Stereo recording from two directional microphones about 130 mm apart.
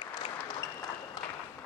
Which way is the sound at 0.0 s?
35° left (ahead or behind).